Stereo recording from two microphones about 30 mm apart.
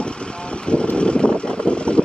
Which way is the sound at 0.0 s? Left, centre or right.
Left.